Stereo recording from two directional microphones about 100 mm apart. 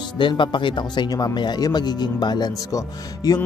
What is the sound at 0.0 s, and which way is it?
Speech, 55° left (ahead or behind).